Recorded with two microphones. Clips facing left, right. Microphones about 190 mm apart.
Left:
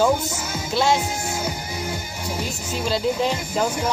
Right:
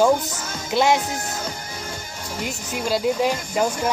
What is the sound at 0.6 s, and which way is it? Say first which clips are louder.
Music: right 2 dB; 15° right (ahead or behind).